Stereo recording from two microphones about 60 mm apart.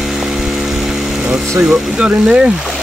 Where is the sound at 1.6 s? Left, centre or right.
Centre.